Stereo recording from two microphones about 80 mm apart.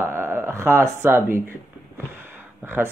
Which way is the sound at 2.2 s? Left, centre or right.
Right.